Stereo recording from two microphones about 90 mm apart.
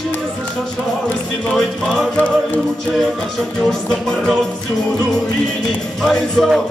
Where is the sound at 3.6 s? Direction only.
5° left (ahead or behind).